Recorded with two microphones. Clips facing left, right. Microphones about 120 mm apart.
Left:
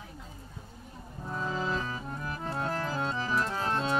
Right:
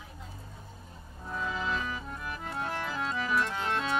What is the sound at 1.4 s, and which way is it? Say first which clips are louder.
Music: left 1 dB; 35° left (ahead or behind).